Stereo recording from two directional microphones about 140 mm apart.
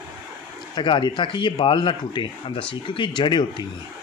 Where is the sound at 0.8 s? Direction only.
35° left (ahead or behind).